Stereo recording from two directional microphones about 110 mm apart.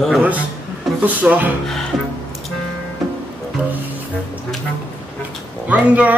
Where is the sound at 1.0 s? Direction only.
15° right (ahead or behind).